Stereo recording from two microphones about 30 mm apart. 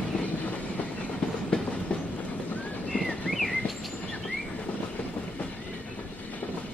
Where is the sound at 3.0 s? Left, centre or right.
Centre.